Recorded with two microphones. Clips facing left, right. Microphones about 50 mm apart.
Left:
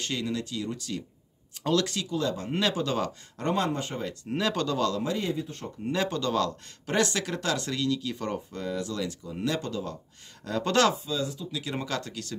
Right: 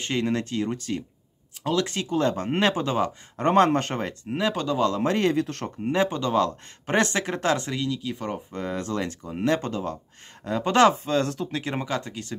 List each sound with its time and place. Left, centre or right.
0.0 s speech: right
1.6 s speech: centre
1.9 s speech: right
3.5 s speech: right
4.3 s speech: centre
5.0 s speech: right
5.9 s speech: right
8.5 s speech: right
10.4 s speech: right
11.1 s speech: right
11.8 s speech: right